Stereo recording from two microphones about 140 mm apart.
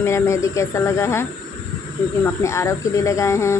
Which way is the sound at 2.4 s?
20° left (ahead or behind).